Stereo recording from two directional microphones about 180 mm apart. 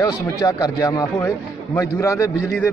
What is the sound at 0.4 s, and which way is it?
A man's voice, 20° left (ahead or behind).